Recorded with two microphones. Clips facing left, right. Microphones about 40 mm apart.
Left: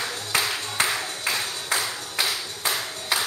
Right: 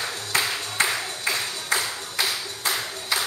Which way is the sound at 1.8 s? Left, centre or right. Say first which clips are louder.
Even; centre.